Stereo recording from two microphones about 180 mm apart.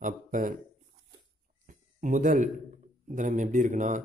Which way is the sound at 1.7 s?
45° right (ahead or behind).